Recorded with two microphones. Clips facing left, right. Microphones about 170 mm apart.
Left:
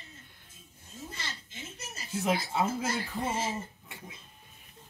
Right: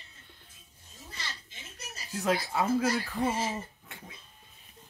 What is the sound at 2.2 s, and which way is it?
Speech, 20° left (ahead or behind).